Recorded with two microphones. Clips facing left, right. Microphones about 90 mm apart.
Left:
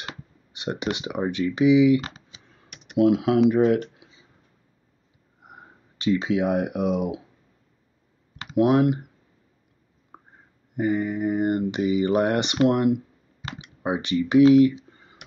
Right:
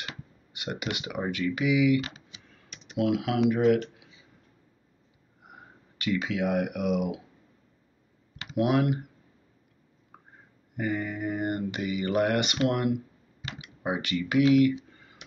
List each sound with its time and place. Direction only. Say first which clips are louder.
0.0 s speech: left 3 dB; 25° left (ahead or behind)
5.9 s speech: left 6 dB; 25° left (ahead or behind)
8.5 s speech: left 6 dB; 25° left (ahead or behind)
10.1 s a sound: left 5 dB; 25° left (ahead or behind)
10.8 s speech: left 7 dB; 25° left (ahead or behind)
13.6 s computer keyboard: left 4 dB; 25° left (ahead or behind)